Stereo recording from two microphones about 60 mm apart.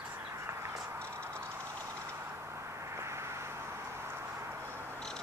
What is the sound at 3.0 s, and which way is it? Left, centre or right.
Vehicle, right.